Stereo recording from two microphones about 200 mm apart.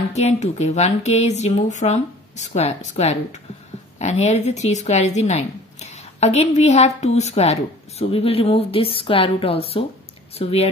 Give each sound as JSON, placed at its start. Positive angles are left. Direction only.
{"t": 0.1, "sound": "speech", "side_deg": 35}